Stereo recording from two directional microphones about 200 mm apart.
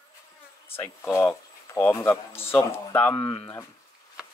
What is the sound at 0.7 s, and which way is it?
Speech, 10° left (ahead or behind).